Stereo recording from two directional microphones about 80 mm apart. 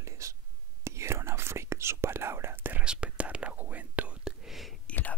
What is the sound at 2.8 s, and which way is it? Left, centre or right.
Whispering, centre.